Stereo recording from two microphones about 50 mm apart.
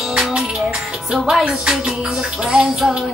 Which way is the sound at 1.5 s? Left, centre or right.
Centre.